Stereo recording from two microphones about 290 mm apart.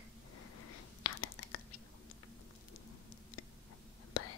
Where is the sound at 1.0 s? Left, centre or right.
Left.